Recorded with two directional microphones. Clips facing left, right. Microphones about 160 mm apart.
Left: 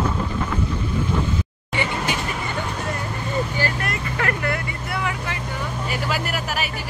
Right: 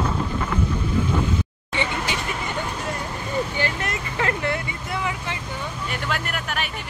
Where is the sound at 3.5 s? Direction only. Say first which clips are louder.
Left 1 dB; 20° right (ahead or behind).